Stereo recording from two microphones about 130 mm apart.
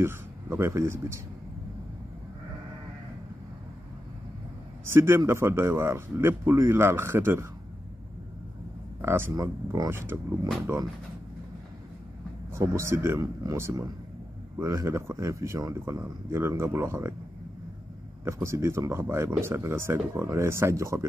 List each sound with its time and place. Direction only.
0.0 s a man's voice: 20° right (ahead or behind)
4.8 s speech: 20° right (ahead or behind)
9.0 s speech: 20° right (ahead or behind)
9.8 s speech: 15° right (ahead or behind)
12.5 s speech: 20° right (ahead or behind)
18.2 s speech: 20° right (ahead or behind)